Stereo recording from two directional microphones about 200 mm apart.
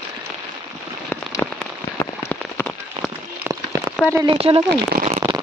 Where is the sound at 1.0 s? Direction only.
10° left (ahead or behind).